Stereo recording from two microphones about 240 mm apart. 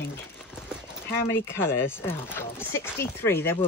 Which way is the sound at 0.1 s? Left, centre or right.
Centre.